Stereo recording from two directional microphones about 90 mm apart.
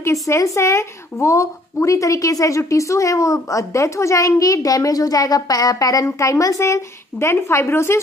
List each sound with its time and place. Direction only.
0.3 s a woman's voice: 30° left (ahead or behind)